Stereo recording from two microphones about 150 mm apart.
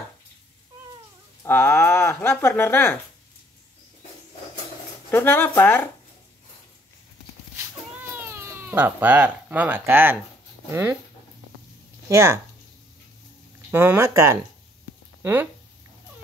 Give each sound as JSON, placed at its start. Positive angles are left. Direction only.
{"t": 1.4, "sound": "speech", "side_deg": 15}
{"t": 5.1, "sound": "speech", "side_deg": 15}
{"t": 8.1, "sound": "speech", "side_deg": -15}
{"t": 12.1, "sound": "speech", "side_deg": -20}
{"t": 13.7, "sound": "speech", "side_deg": -15}